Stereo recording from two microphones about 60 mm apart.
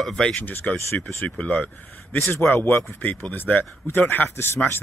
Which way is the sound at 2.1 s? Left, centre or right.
Left.